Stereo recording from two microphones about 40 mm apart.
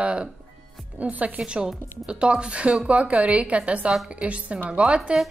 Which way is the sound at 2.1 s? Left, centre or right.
Right.